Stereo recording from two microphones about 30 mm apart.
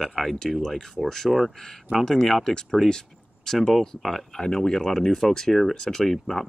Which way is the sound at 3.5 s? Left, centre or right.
Centre.